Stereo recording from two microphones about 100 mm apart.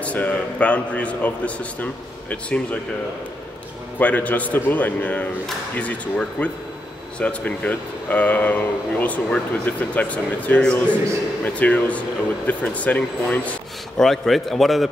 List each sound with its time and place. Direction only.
0.0 s speech: 15° left (ahead or behind)
4.0 s speech: 15° left (ahead or behind)
13.9 s a man's voice: centre (ahead or behind)